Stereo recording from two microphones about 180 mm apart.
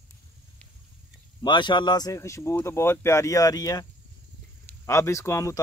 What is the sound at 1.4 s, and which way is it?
Speech, 25° left (ahead or behind).